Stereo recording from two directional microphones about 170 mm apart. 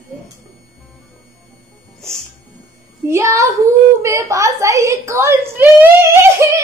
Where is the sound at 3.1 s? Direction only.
20° right (ahead or behind).